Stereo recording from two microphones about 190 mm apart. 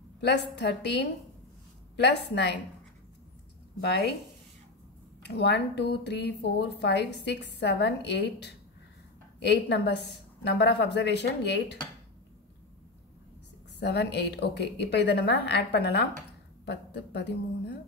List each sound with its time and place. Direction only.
0.2 s a woman's voice: 65° left (ahead or behind)
2.0 s a woman's voice: 60° left (ahead or behind)
5.3 s a woman's voice: 60° left (ahead or behind)
13.7 s a woman's voice: 60° left (ahead or behind)